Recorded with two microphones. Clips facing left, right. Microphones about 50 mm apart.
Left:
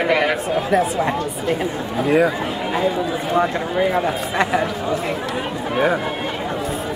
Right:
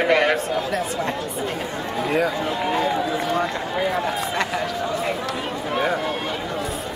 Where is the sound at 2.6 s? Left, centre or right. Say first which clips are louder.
Left 2 dB; centre.